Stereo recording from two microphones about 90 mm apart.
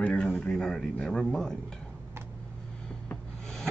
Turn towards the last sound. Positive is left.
turn(degrees=5)  # may be behind; listen again after turning